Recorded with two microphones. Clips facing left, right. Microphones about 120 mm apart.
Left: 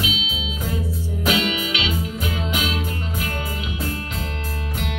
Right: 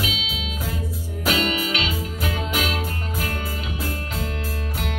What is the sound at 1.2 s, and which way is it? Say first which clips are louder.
Music: even; 40° right (ahead or behind).